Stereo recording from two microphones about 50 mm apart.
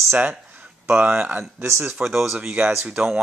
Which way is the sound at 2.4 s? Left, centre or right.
Right.